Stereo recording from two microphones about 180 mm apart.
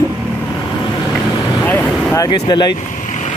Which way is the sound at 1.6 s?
10° left (ahead or behind).